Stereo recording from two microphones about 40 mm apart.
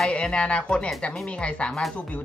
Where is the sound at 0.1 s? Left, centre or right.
Left.